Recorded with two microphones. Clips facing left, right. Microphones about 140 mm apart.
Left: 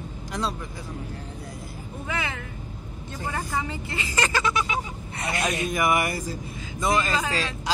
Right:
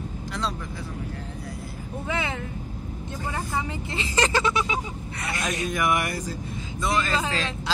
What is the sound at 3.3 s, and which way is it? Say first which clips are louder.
Speech: left 1 dB; 10° right (ahead or behind).